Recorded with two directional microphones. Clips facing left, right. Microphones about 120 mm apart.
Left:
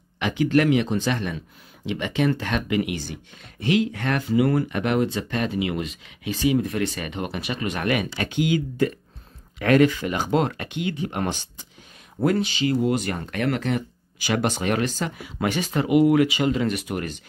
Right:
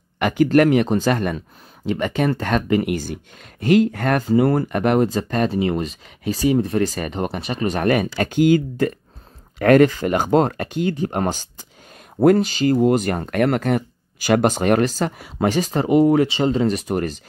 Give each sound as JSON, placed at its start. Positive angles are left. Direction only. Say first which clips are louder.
{"t": 0.2, "sound": "speech", "louder": "right 5 dB", "side_deg": -45}